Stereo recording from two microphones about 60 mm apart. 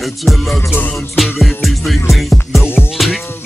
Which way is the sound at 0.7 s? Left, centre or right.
Left.